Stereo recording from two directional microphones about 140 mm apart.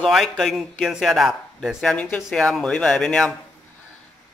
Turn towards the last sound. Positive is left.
turn(degrees=5)  # may be behind; listen again after turning